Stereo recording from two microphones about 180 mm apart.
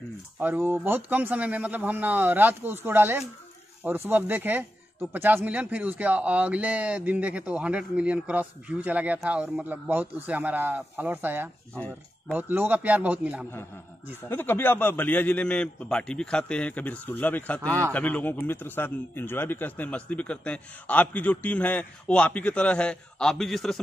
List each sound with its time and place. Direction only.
0.4 s speech: 10° right (ahead or behind)
14.3 s a man's voice: 10° left (ahead or behind)